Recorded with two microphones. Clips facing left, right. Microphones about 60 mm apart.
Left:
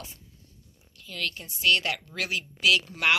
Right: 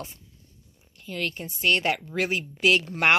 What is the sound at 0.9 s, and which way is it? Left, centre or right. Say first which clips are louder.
A woman's voice: right 3 dB; right.